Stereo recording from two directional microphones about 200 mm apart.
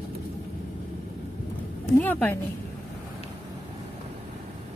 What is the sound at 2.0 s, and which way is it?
Speech, 10° left (ahead or behind).